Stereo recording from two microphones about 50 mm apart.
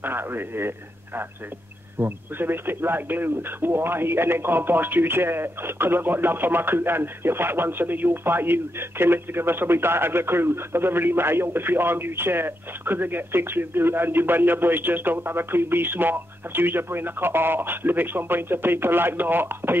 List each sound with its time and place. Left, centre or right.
0.0 s a man's voice: right